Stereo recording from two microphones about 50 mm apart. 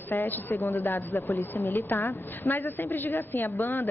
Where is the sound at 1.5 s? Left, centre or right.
Left.